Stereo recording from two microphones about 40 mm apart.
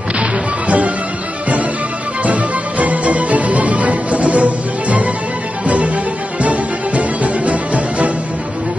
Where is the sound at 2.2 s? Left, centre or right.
Right.